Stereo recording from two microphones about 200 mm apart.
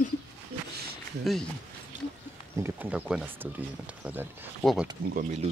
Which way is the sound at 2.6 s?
5° right (ahead or behind).